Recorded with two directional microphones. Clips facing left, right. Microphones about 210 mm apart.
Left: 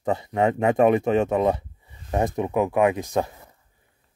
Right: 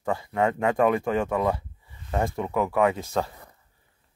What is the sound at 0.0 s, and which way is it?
Speech, 20° left (ahead or behind).